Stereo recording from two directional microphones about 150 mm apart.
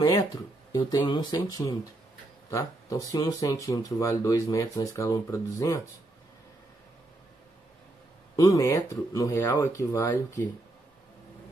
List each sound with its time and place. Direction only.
0.0 s speech: 25° left (ahead or behind)
8.4 s speech: 25° left (ahead or behind)